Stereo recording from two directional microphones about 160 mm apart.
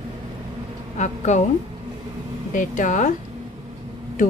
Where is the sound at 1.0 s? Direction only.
50° left (ahead or behind).